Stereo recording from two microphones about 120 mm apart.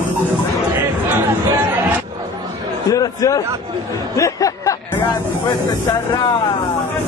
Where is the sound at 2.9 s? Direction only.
30° left (ahead or behind).